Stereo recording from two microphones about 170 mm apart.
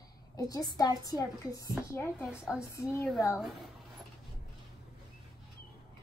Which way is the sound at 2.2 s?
5° right (ahead or behind).